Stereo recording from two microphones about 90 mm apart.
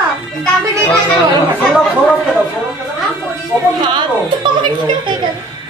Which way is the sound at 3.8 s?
60° right (ahead or behind).